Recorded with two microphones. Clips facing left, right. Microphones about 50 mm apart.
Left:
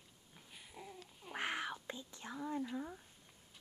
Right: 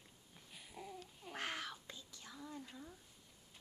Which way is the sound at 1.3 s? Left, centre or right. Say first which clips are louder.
Left 4 dB; centre.